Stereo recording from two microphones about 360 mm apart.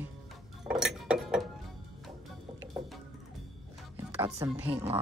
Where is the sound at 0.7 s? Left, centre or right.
Centre.